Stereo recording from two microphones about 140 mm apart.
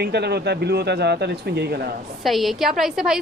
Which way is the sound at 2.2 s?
Centre (ahead or behind).